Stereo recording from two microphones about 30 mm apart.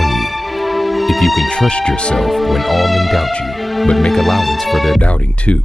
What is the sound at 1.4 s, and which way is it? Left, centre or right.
Speech, left.